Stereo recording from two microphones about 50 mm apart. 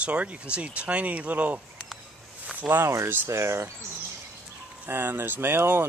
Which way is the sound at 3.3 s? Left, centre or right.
Right.